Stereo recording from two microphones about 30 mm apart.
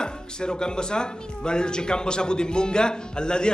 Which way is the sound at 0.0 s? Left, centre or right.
Left.